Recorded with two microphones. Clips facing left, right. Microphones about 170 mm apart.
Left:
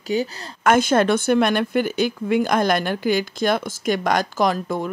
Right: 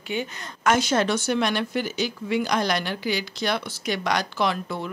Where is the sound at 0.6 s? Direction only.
55° left (ahead or behind).